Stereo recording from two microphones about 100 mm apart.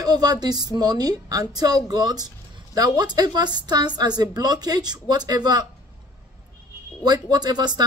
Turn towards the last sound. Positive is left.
turn(degrees=-45)  # may be behind; listen again after turning